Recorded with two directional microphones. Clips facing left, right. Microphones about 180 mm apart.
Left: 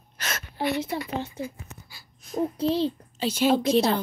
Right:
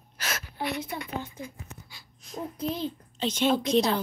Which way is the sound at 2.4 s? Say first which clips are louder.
Left 7 dB; 30° left (ahead or behind).